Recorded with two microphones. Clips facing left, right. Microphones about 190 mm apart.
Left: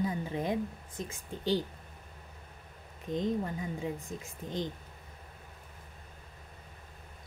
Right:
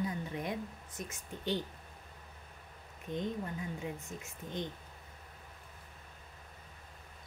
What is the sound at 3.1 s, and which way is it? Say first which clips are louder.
Speech: left 5 dB; 40° left (ahead or behind).